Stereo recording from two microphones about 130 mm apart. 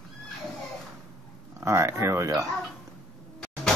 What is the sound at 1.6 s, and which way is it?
Speech, 20° right (ahead or behind).